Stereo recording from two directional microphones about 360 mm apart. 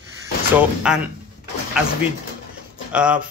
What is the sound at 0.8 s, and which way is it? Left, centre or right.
Speech, centre.